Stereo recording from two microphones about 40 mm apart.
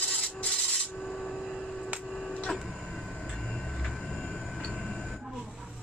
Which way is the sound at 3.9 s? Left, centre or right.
Centre.